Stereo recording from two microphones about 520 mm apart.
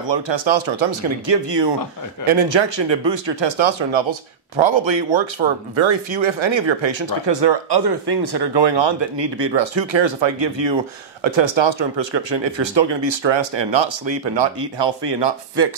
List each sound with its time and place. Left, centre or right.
0.1 s speech: right